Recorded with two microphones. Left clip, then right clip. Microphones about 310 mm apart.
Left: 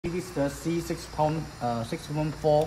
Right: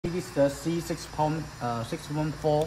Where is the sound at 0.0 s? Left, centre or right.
Centre.